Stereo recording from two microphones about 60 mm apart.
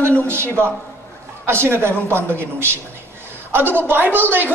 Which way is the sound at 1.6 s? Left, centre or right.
Right.